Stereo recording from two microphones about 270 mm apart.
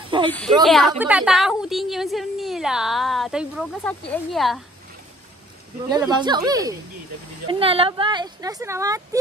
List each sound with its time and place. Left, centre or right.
0.3 s a woman's voice: centre
5.9 s speech: centre